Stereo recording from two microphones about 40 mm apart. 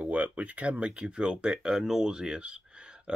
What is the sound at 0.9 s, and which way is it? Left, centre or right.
Speech, right.